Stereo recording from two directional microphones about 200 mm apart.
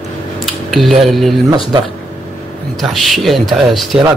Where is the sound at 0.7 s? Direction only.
Centre (ahead or behind).